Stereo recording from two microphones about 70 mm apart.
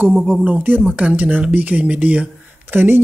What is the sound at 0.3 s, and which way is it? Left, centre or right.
Speech, right.